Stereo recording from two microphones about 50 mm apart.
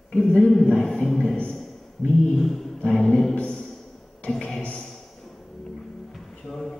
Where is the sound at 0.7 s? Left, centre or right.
Centre.